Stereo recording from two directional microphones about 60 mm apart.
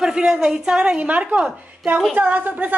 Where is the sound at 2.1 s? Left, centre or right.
Right.